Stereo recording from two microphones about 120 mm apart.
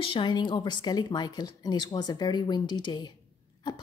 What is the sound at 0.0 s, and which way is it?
A woman's voice, 45° left (ahead or behind).